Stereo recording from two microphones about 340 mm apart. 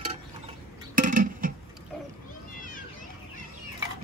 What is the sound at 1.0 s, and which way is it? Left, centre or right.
Music, right.